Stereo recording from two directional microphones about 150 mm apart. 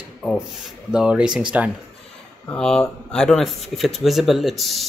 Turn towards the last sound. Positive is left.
turn(degrees=0)  # may be behind; listen again after turning